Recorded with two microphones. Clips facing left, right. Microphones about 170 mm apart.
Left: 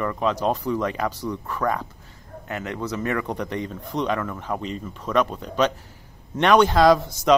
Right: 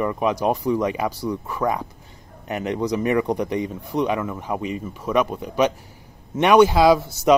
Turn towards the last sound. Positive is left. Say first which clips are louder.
# right 1 dB
turn(degrees=-5)  # may be behind; listen again after turning